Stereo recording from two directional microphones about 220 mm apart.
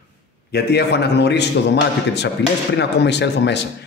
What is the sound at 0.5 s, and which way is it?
A man's voice, 50° left (ahead or behind).